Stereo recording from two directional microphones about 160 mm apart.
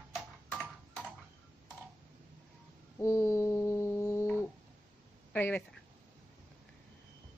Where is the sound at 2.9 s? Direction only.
15° left (ahead or behind).